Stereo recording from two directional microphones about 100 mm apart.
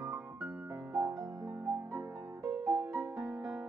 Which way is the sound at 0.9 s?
40° right (ahead or behind).